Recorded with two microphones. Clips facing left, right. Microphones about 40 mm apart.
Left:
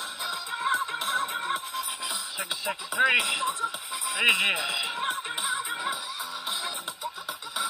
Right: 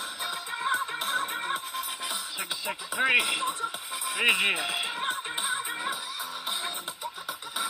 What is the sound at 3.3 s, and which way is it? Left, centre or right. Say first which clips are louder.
Music: left 1 dB; left.